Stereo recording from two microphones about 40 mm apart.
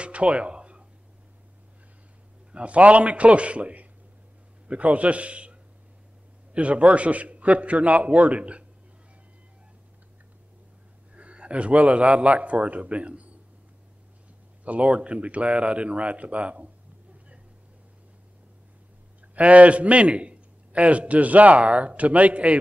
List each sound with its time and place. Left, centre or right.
0.0 s a sound: right
2.5 s a man's voice: right
11.1 s a man's voice: right
14.6 s a man's voice: right
19.3 s a man's voice: right